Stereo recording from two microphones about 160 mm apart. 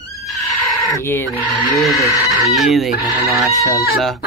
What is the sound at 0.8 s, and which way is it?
Speech, 15° left (ahead or behind).